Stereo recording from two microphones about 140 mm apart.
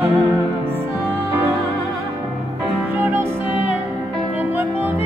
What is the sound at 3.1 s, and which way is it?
Music, 15° right (ahead or behind).